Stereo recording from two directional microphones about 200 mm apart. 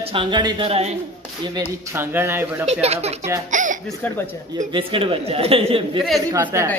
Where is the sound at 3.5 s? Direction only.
40° right (ahead or behind).